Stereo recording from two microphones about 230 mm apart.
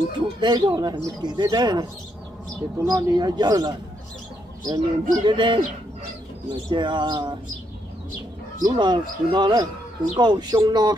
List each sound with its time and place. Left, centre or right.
0.4 s speech: centre
8.6 s speech: centre